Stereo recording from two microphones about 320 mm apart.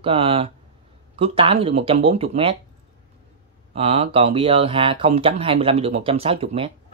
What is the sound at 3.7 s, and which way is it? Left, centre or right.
Speech, centre.